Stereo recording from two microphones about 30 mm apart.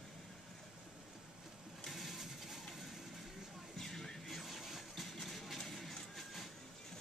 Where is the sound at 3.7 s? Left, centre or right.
Centre.